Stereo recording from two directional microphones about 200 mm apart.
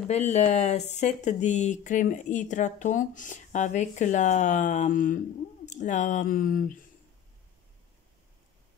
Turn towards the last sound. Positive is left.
turn(degrees=40)  # may be behind; listen again after turning